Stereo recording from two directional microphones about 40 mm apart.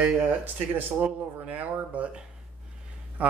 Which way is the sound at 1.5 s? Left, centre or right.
Right.